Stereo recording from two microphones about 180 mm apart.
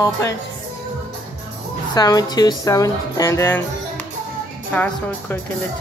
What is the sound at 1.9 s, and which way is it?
Speech, 20° left (ahead or behind).